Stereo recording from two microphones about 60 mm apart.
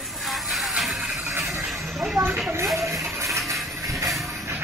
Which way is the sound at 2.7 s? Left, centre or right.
Right.